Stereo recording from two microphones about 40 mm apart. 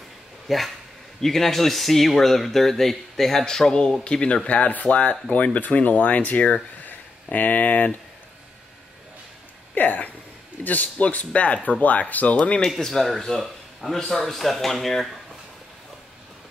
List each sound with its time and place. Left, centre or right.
0.5 s a man's voice: centre; by 4.4 s left
4.5 s speech: left
9.8 s speech: left
12.4 s speech: left
12.7 s speech: centre